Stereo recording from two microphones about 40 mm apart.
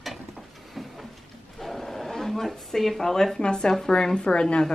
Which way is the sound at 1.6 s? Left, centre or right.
Centre.